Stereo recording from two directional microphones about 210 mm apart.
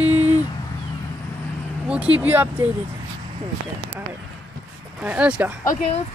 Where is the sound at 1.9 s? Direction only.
5° right (ahead or behind).